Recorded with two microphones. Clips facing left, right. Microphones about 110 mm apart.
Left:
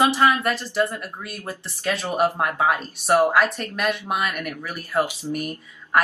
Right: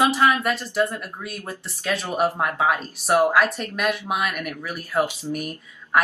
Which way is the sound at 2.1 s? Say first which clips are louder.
Left 1 dB; 10° left (ahead or behind).